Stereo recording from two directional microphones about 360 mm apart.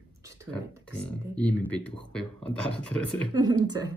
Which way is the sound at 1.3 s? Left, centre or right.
Centre.